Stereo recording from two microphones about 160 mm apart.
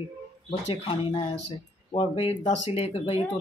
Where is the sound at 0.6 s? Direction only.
35° left (ahead or behind).